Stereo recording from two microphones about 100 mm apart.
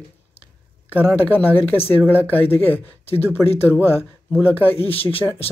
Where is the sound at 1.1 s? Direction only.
15° left (ahead or behind).